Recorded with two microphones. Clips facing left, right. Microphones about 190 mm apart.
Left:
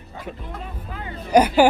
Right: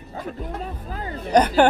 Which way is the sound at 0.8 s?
40° right (ahead or behind).